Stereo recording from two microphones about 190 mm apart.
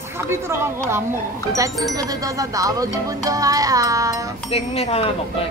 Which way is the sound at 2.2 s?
20° right (ahead or behind).